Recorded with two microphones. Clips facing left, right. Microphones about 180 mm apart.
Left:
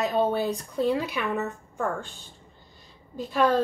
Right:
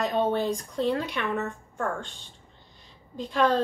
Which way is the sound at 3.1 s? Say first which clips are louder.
Left 1 dB; 5° left (ahead or behind).